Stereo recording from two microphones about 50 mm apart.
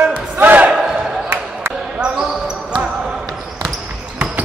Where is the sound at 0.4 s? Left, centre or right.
Right.